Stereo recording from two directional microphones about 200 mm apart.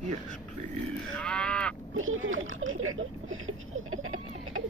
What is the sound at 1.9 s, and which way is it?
Speech, 80° right.